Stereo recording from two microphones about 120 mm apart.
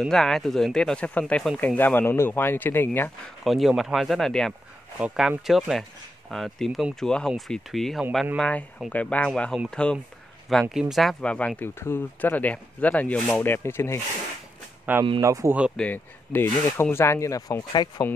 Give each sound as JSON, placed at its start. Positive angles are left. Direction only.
{"t": 0.0, "sound": "speech", "side_deg": 5}
{"t": 3.4, "sound": "speech", "side_deg": 0}
{"t": 4.9, "sound": "speech", "side_deg": -5}
{"t": 14.9, "sound": "speech", "side_deg": -15}
{"t": 15.7, "sound": "speech", "side_deg": 10}